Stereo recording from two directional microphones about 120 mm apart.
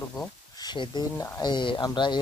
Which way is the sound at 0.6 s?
35° left (ahead or behind).